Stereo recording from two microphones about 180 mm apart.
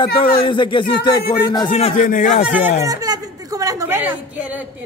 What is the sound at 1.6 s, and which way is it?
Speech, 40° left (ahead or behind).